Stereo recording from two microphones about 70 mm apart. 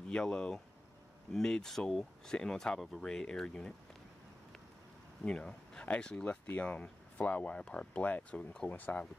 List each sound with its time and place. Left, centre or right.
0.1 s speech: centre
5.2 s speech: centre